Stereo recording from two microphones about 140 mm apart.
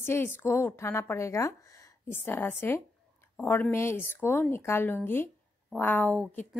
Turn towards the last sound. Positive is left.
turn(degrees=10)  # may be behind; listen again after turning